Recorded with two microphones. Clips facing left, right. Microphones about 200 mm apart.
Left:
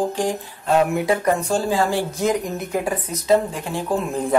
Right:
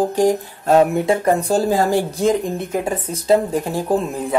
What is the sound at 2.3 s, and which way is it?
Speech, 25° right (ahead or behind).